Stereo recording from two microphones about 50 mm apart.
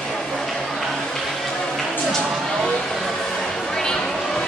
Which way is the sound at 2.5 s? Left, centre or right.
Centre.